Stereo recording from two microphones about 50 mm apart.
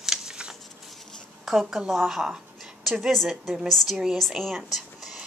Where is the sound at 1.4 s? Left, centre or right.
Centre.